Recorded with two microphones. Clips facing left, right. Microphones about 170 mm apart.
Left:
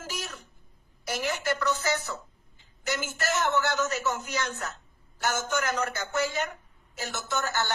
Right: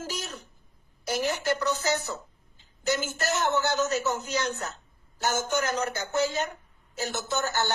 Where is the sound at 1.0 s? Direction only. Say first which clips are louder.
Right 2 dB; 25° right (ahead or behind).